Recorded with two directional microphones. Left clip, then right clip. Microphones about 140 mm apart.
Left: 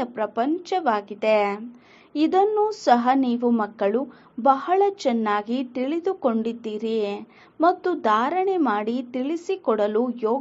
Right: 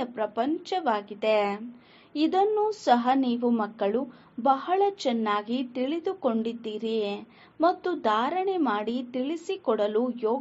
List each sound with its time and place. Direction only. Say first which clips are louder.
0.0 s a woman's voice: left 4 dB; 45° left (ahead or behind)